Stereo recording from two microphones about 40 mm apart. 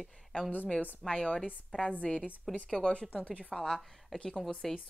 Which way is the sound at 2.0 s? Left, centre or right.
Centre.